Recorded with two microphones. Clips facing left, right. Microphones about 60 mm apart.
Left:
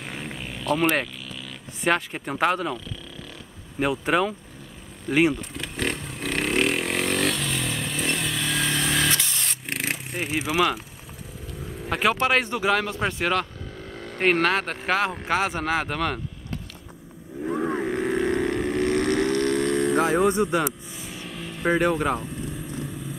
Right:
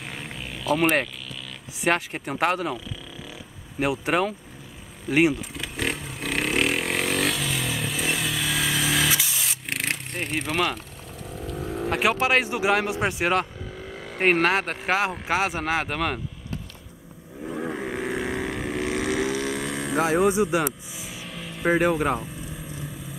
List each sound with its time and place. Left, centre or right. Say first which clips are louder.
0.0 s vehicle: left 1 dB; centre
1.8 s speech: even; centre
3.8 s speech: left 1 dB; centre
5.0 s vehicle: even; centre
11.4 s vehicle: right 8 dB; right
12.1 s speech: left 1 dB; centre
13.7 s speech: right 1 dB; centre
17.6 s livestock: left 3 dB; centre
20.9 s vehicle: left 1 dB; centre